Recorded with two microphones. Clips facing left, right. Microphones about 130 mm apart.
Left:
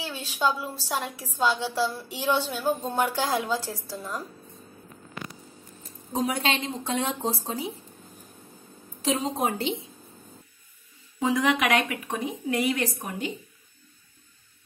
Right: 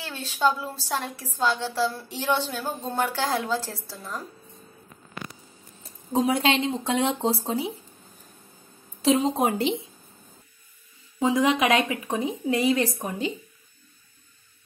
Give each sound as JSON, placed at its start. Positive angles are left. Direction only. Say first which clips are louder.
{"t": 0.0, "sound": "a woman's voice", "louder": "right 2 dB", "side_deg": 10}
{"t": 6.1, "sound": "speech", "louder": "right 4 dB", "side_deg": -30}
{"t": 9.0, "sound": "a woman's voice", "louder": "right 5 dB", "side_deg": -30}
{"t": 11.1, "sound": "speech", "louder": "right 2 dB", "side_deg": -25}